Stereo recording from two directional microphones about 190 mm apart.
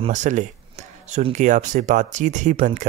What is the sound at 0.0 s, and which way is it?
Speech, 40° right (ahead or behind).